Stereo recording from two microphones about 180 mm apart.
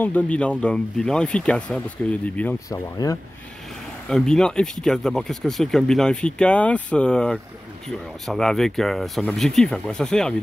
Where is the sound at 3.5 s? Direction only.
Centre (ahead or behind).